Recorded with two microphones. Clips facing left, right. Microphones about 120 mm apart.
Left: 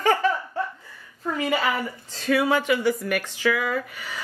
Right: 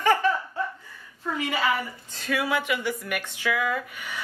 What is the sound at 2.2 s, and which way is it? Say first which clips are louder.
Speech: left 5 dB; 35° left (ahead or behind).